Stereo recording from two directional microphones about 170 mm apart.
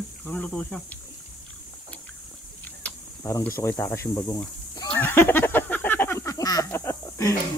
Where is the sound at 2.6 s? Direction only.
15° left (ahead or behind).